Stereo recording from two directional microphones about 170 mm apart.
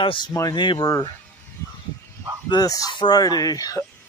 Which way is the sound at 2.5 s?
20° left (ahead or behind).